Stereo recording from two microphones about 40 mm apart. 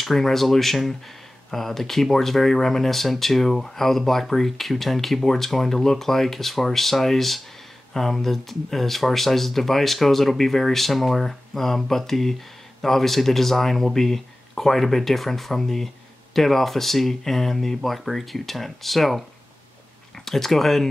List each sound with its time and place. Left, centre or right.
0.0 s speech: centre
20.2 s speech: centre